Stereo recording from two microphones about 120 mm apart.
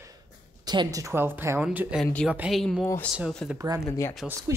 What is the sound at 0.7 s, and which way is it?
Speech, 35° right (ahead or behind).